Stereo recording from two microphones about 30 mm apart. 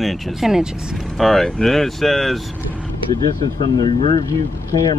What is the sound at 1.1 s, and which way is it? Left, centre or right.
Speech, centre.